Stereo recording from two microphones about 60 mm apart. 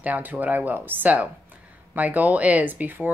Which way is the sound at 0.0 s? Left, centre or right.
Right.